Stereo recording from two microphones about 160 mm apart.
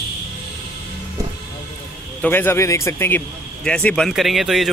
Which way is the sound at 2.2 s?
15° left (ahead or behind).